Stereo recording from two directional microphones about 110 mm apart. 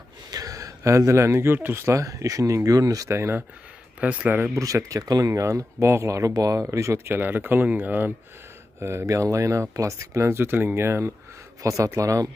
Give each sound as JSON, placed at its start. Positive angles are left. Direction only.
{"t": 0.3, "sound": "speech", "side_deg": -35}
{"t": 4.0, "sound": "speech", "side_deg": -10}
{"t": 4.4, "sound": "speech", "side_deg": -30}